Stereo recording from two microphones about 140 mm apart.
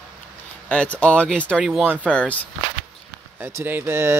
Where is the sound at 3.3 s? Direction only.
15° right (ahead or behind).